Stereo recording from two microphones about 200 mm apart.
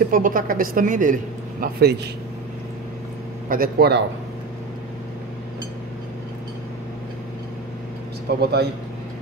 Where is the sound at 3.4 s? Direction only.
45° right (ahead or behind).